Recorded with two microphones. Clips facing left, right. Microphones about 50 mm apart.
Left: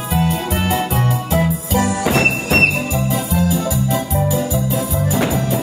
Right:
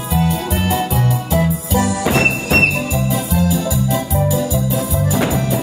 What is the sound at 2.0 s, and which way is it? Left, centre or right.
Music, centre.